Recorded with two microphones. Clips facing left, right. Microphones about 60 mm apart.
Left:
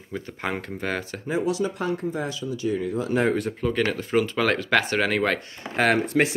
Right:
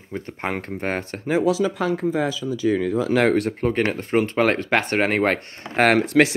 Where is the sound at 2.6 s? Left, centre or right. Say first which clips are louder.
Right 5 dB; right.